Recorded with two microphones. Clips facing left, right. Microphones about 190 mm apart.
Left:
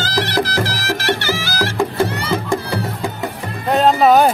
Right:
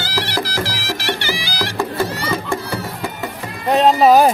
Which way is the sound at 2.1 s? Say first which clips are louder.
Left 2 dB; 60° left (ahead or behind).